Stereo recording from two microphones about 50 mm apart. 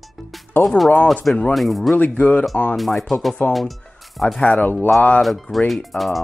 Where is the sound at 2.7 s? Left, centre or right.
Centre.